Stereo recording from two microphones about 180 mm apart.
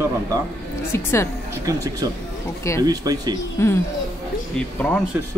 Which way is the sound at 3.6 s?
15° left (ahead or behind).